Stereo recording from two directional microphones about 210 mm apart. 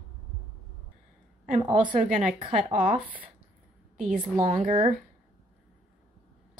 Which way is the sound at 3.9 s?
40° right (ahead or behind).